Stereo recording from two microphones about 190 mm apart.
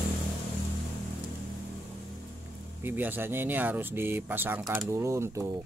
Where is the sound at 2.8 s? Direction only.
10° right (ahead or behind).